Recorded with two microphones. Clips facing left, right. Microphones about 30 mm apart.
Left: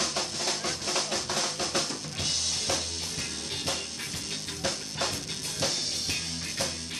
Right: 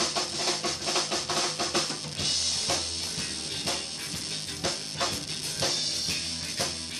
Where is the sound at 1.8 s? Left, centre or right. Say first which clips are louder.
Right 1 dB; right.